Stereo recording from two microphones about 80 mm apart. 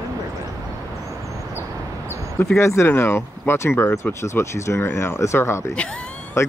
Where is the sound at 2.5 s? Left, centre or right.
Left.